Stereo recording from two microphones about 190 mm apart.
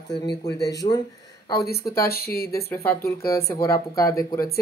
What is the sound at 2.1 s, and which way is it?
Speech, 55° left (ahead or behind).